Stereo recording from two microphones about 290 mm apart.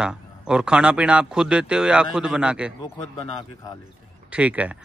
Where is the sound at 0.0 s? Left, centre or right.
Centre.